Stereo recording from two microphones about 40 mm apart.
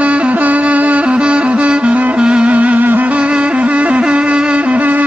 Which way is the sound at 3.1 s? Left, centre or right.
Right.